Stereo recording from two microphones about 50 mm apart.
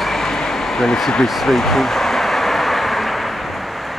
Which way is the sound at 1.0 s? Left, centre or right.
Centre.